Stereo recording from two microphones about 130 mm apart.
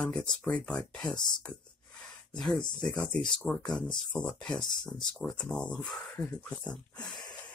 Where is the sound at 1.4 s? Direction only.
10° left (ahead or behind).